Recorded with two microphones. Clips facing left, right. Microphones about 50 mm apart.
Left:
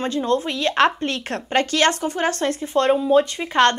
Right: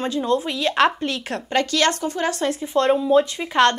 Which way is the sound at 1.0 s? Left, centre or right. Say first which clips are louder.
Left 1 dB; left.